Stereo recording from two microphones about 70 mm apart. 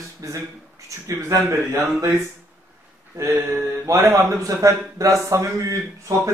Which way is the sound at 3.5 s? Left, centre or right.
Right.